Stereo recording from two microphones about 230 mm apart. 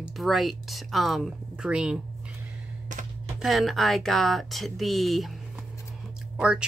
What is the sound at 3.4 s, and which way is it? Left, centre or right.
Speech, centre.